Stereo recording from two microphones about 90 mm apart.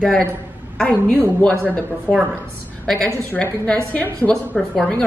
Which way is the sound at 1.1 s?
15° left (ahead or behind).